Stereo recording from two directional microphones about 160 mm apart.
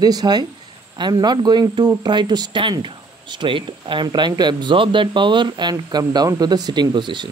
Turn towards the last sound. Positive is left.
turn(degrees=-30)  # may be behind; listen again after turning